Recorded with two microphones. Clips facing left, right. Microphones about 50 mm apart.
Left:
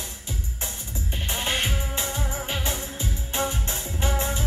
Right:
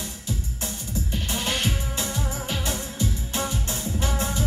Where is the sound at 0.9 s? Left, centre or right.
Left.